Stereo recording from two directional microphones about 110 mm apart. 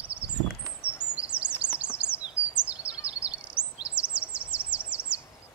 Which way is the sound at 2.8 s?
55° right (ahead or behind).